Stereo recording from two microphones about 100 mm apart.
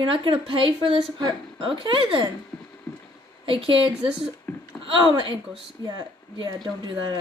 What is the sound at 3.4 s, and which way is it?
Speech, 60° right (ahead or behind).